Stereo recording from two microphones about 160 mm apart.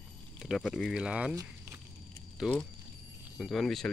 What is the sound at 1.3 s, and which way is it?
Walk, 20° right (ahead or behind).